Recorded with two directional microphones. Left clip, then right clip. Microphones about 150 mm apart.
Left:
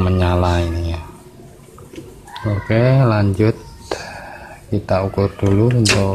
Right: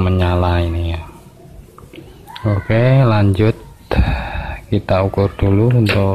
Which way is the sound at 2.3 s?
20° right (ahead or behind).